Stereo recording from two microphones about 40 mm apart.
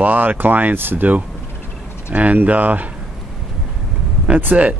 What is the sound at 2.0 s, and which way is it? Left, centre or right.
Speech, right.